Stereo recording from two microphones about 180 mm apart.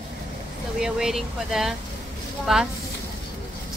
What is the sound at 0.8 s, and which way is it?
Speech, centre (ahead or behind).